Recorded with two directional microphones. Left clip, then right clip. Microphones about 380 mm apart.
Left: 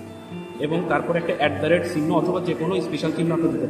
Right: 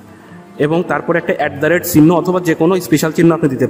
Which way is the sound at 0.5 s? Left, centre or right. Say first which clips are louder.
Right 8 dB; right.